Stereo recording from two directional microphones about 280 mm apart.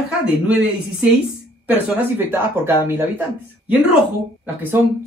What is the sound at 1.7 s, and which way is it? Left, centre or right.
Speech, centre.